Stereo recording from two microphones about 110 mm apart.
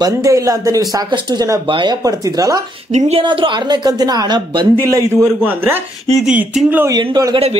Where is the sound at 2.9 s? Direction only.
80° right.